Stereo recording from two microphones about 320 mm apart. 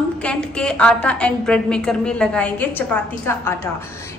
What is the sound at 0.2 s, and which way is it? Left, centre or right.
A woman's voice, centre.